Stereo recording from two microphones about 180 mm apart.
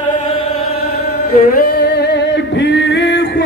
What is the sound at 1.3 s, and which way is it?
Music, 55° left (ahead or behind).